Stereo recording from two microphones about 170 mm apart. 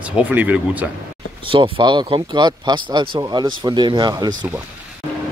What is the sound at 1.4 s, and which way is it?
Speech, 30° right (ahead or behind).